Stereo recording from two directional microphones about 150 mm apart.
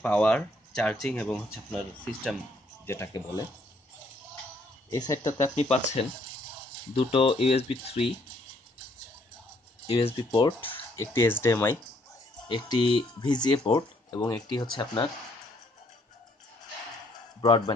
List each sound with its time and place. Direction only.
0.0 s speech: 10° left (ahead or behind)
2.9 s speech: 20° left (ahead or behind)
4.8 s speech: 25° left (ahead or behind)
5.4 s speech: 45° left (ahead or behind)
7.1 s speech: 35° left (ahead or behind)
9.8 s speech: 35° left (ahead or behind)
10.6 s speech: 15° left (ahead or behind)
12.4 s speech: 30° left (ahead or behind)
17.4 s speech: 25° left (ahead or behind)